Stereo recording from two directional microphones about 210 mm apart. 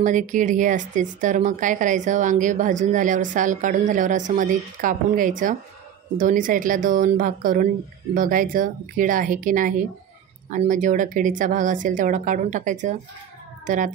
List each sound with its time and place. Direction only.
0.0 s speech: 35° right (ahead or behind)